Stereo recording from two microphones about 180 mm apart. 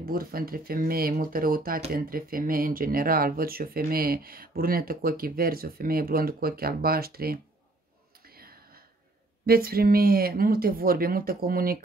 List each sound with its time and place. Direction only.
0.0 s speech: 55° right (ahead or behind)
8.3 s a sound: 55° right (ahead or behind)
9.5 s speech: 55° right (ahead or behind)